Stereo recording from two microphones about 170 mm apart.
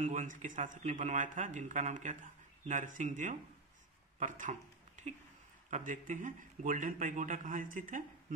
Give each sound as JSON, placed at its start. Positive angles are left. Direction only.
{"t": 0.0, "sound": "speech", "side_deg": -45}